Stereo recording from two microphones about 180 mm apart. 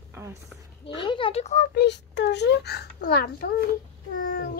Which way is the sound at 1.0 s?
30° left (ahead or behind).